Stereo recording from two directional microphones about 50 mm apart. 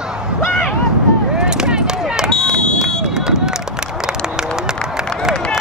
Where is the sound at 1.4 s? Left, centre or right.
Centre.